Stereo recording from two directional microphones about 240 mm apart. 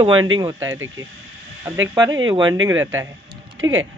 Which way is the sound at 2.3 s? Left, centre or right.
Centre.